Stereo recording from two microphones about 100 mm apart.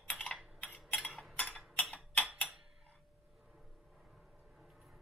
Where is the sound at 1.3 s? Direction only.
15° left (ahead or behind).